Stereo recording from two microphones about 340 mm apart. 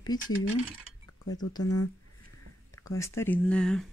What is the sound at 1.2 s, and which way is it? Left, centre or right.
Speech, left.